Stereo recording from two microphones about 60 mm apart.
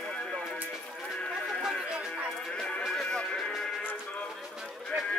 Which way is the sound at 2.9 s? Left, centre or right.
Centre.